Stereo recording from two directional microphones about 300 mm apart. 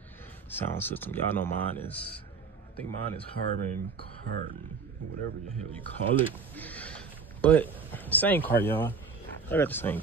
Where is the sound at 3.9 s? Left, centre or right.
Centre.